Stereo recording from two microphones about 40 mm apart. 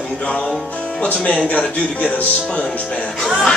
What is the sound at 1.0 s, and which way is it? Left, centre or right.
Speech, left.